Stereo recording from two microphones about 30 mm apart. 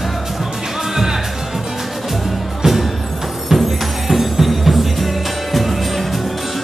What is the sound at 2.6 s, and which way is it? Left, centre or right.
Music, centre.